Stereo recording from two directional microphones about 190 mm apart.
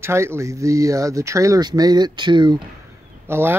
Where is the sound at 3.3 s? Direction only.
10° right (ahead or behind).